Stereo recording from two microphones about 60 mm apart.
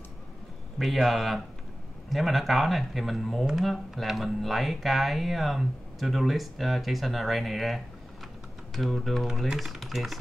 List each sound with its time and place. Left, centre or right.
0.7 s speech: centre